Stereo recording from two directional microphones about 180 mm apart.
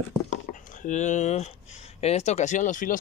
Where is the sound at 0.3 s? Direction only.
45° left (ahead or behind).